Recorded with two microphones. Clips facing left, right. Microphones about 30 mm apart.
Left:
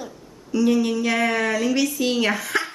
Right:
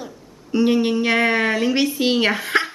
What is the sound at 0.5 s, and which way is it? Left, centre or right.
A woman's voice, right.